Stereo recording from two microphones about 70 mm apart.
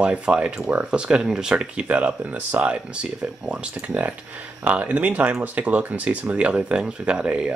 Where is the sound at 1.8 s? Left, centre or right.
Right.